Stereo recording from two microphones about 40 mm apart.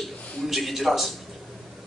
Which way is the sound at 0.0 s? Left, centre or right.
Centre.